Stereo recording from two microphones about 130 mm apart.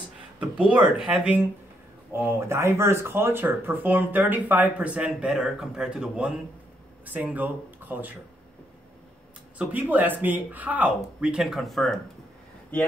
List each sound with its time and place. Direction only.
0.4 s speech: 10° right (ahead or behind)
9.6 s speech: 10° right (ahead or behind)